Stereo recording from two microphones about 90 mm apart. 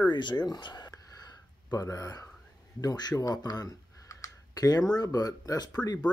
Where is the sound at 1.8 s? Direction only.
40° left (ahead or behind).